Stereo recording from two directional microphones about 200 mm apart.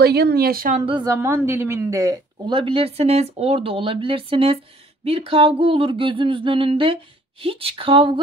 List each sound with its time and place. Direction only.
0.0 s a woman's voice: 50° right (ahead or behind)
0.8 s a woman's voice: 20° right (ahead or behind)